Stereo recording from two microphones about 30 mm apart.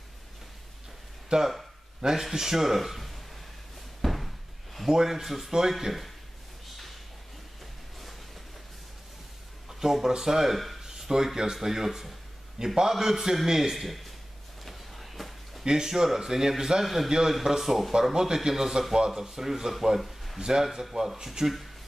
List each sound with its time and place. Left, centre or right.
1.3 s a man's voice: right; by 3.2 s centre
4.0 s slam: centre
4.8 s speech: centre
9.7 s a sound: centre
10.0 s speech: centre
10.8 s a sound: centre
11.5 s speech: centre
12.5 s a man's voice: centre
13.7 s speech: centre
14.6 s a sound: centre
15.6 s speech: centre
16.8 s speech: centre
20.0 s a sound: centre
20.3 s speech: right